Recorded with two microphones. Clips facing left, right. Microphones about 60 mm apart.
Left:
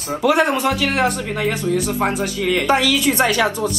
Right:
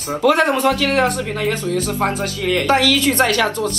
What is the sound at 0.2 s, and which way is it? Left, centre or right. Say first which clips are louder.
Speech: right 2 dB; centre.